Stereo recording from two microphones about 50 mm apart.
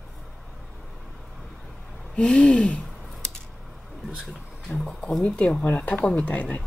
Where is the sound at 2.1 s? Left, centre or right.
Centre.